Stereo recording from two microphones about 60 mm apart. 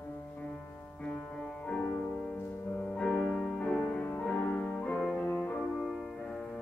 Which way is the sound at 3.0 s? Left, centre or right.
Centre.